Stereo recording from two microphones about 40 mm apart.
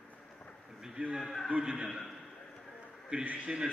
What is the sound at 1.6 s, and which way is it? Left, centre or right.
Speech, right.